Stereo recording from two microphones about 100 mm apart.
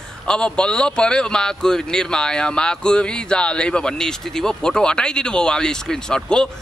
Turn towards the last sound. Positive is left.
turn(degrees=5)  # may be behind; listen again after turning